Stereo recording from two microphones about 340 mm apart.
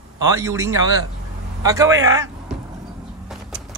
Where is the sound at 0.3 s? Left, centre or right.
Centre.